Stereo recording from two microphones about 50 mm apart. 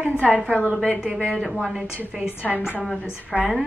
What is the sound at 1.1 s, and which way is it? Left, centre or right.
Speech, centre.